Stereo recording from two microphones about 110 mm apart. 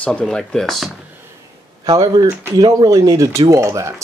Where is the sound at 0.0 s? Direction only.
10° left (ahead or behind).